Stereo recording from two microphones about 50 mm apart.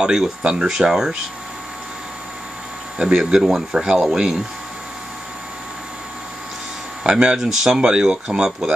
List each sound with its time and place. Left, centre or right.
0.0 s speech: centre
3.0 s speech: centre
7.0 s speech: centre
7.3 s speech: centre